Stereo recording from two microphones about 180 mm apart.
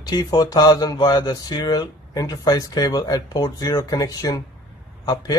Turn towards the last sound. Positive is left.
turn(degrees=20)  # may be behind; listen again after turning